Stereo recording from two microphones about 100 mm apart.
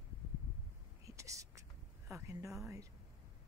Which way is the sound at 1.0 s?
30° right (ahead or behind).